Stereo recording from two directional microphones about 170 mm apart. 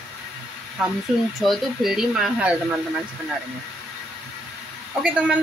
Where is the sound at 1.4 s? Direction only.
Centre (ahead or behind).